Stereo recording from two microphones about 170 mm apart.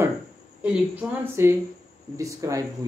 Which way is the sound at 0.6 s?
10° right (ahead or behind).